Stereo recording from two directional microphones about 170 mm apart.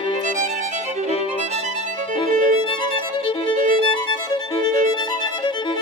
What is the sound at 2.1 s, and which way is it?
Violin, 30° left (ahead or behind).